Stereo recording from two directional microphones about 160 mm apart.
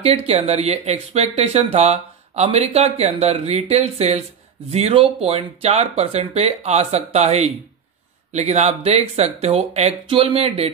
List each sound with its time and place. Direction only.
0.0 s speech: 40° right (ahead or behind)